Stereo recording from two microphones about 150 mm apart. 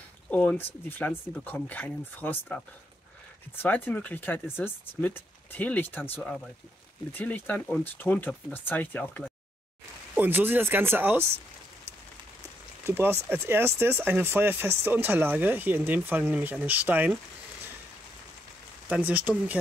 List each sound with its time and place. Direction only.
0.3 s speech: 10° left (ahead or behind)
3.6 s speech: 10° left (ahead or behind)
10.1 s speech: 15° right (ahead or behind)
12.8 s speech: 15° right (ahead or behind)
18.9 s speech: 10° right (ahead or behind)